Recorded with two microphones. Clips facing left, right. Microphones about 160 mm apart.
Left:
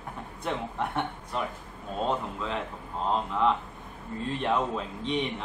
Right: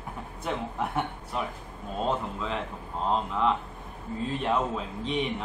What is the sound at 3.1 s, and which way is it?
A man's voice, centre (ahead or behind).